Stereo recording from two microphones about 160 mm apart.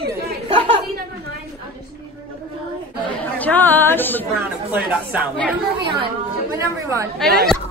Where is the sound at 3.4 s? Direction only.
10° left (ahead or behind).